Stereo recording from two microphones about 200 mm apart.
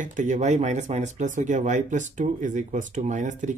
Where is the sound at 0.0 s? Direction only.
40° right (ahead or behind).